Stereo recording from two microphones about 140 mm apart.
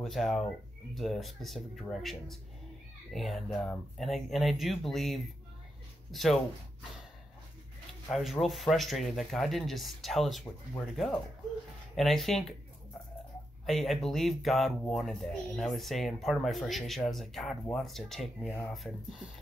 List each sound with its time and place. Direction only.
0.0 s speech: centre (ahead or behind)
8.1 s speech: centre (ahead or behind)
12.0 s speech: centre (ahead or behind)
13.7 s speech: centre (ahead or behind)